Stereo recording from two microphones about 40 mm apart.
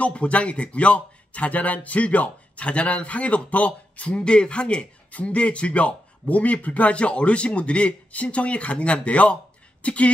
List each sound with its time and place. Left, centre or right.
0.0 s a man's voice: left